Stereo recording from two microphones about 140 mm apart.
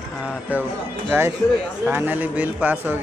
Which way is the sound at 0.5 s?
10° right (ahead or behind).